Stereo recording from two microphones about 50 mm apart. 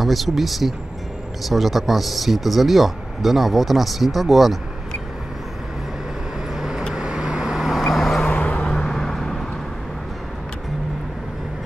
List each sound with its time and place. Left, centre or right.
0.0 s speech: centre
6.5 s vehicle: centre
8.5 s vehicle: centre